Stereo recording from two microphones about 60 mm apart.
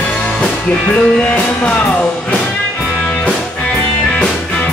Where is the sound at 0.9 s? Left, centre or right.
Centre.